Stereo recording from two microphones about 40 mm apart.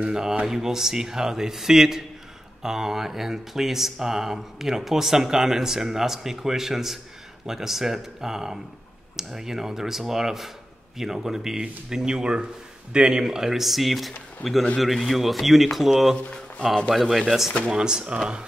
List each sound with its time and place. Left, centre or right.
0.0 s speech: centre
17.6 s speech: centre